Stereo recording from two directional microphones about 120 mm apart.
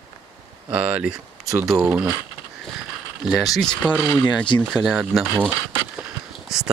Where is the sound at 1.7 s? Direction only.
20° right (ahead or behind).